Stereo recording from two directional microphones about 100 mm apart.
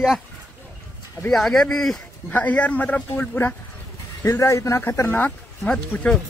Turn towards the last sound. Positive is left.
turn(degrees=10)  # may be behind; listen again after turning